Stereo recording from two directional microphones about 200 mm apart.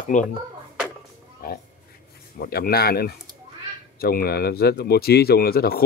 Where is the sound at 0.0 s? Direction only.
40° left (ahead or behind).